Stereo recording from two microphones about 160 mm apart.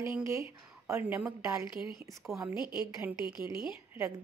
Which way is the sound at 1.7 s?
30° left (ahead or behind).